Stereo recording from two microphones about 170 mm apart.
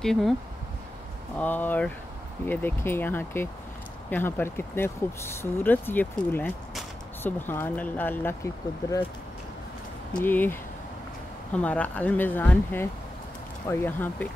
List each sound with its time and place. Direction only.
0.0 s speech: 5° left (ahead or behind)
1.4 s speech: 10° left (ahead or behind)
10.2 s speech: 10° left (ahead or behind)